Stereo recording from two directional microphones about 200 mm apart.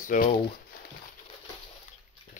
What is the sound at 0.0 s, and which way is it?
Speech, 40° left (ahead or behind).